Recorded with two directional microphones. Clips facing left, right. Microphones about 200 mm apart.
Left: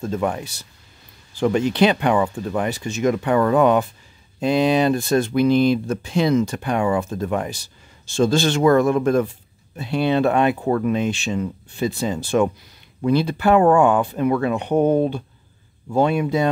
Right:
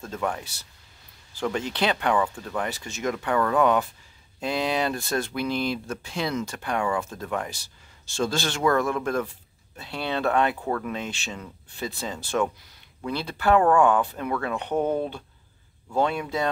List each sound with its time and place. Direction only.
0.0 s speech: 20° left (ahead or behind)